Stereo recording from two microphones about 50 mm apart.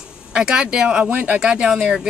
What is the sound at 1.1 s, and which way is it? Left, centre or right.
Speech, right.